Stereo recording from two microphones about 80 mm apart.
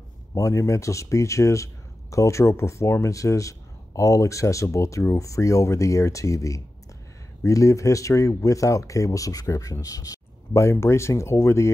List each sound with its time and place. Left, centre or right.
0.3 s speech: left